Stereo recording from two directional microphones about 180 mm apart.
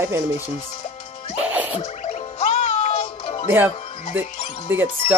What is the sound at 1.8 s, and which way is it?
Music, 35° left (ahead or behind).